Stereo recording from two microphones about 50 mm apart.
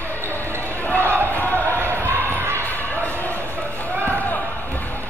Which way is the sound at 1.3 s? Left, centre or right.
Left.